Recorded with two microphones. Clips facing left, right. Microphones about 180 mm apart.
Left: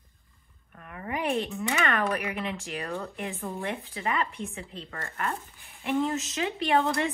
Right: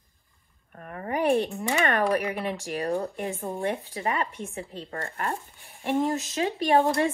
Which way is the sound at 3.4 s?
20° right (ahead or behind).